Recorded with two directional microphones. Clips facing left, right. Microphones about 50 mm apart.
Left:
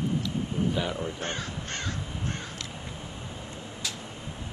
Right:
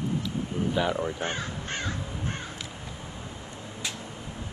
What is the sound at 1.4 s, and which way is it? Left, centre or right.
Crow, centre.